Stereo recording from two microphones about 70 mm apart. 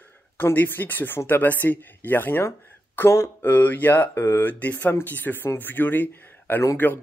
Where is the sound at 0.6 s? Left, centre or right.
Left.